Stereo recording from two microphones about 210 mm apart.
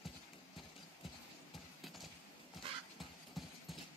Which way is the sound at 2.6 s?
25° right (ahead or behind).